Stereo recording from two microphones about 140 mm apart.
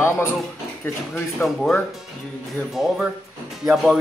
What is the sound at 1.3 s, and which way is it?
Speech, centre (ahead or behind).